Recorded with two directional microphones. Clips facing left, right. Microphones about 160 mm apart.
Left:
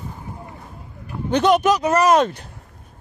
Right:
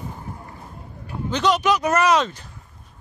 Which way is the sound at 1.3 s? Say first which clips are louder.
Left 4 dB; 50° left (ahead or behind).